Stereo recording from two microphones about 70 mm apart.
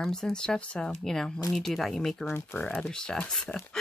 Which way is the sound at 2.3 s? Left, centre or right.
Left.